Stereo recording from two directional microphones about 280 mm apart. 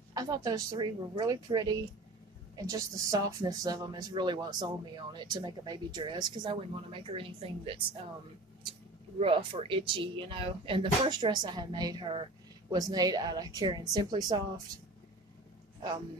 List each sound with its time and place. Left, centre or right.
0.1 s speech: centre
9.2 s speech: centre